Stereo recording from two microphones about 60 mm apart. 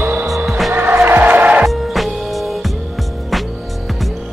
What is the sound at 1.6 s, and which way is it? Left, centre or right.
Music, centre.